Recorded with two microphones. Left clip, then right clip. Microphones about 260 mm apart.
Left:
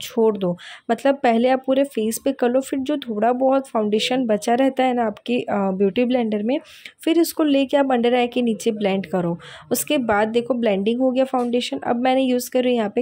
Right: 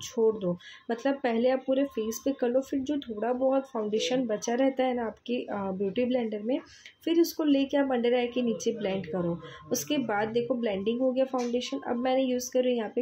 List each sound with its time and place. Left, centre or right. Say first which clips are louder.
0.0 s speech: left 7 dB; left